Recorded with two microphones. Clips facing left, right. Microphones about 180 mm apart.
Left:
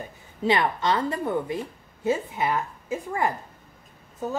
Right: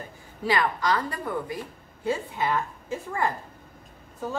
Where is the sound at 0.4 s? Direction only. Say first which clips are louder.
Left 2 dB; 25° left (ahead or behind).